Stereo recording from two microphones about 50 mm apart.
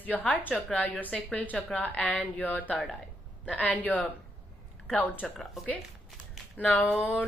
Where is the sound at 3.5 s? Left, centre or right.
Left.